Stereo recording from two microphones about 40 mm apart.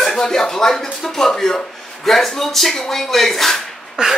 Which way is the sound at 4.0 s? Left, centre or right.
Centre.